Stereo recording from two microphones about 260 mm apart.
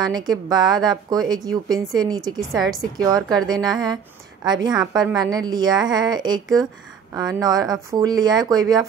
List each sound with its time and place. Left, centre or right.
0.0 s a woman's voice: centre
2.5 s a woman's voice: centre
3.4 s a woman's voice: centre